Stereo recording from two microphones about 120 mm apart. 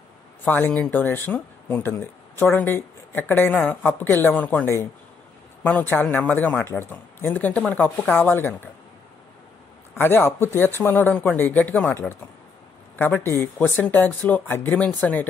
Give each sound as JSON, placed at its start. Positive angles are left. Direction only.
{"t": 0.5, "sound": "speech", "side_deg": 15}
{"t": 9.9, "sound": "speech", "side_deg": 20}